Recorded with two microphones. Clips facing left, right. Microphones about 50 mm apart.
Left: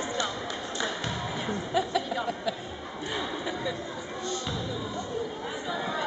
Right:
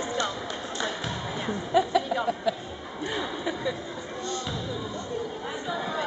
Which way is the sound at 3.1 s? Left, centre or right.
Centre.